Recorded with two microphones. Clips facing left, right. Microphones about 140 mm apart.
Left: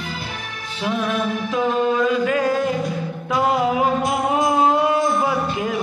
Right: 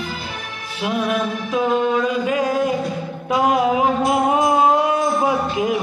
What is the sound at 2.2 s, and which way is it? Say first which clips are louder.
Music: even; 15° right (ahead or behind).